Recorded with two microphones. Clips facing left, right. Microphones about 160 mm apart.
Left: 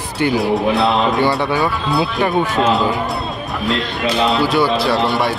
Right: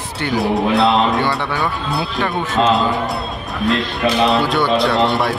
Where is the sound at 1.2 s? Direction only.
20° left (ahead or behind).